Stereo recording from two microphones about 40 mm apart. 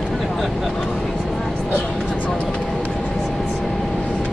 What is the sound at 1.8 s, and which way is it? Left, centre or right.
Music, left.